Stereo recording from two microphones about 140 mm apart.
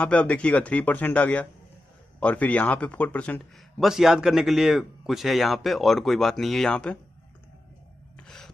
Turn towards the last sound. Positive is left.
turn(degrees=5)  # may be behind; listen again after turning